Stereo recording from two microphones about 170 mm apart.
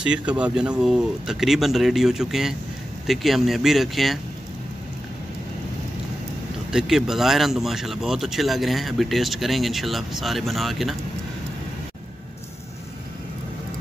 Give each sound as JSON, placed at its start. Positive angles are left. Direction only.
{"t": 0.0, "sound": "speech", "side_deg": -5}
{"t": 6.7, "sound": "speech", "side_deg": -5}